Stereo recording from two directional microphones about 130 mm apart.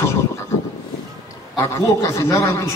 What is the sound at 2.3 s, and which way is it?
Speech, 25° left (ahead or behind).